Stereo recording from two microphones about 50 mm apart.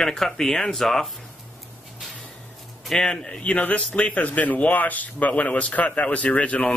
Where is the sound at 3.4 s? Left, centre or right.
Left.